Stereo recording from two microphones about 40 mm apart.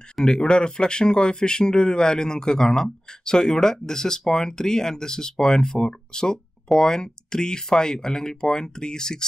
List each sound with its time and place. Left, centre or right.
0.2 s speech: centre